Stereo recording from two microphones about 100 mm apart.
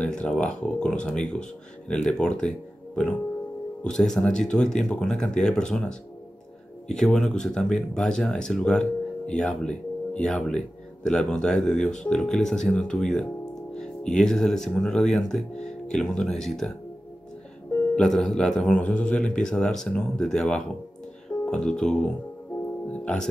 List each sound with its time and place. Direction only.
0.0 s speech: 10° left (ahead or behind)
3.8 s speech: 5° left (ahead or behind)
17.9 s speech: 5° left (ahead or behind)